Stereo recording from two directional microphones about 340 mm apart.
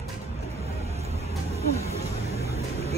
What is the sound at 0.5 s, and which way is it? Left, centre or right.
Vehicle, centre.